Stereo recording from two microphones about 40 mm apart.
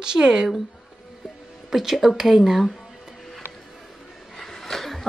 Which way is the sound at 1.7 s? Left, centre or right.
Centre.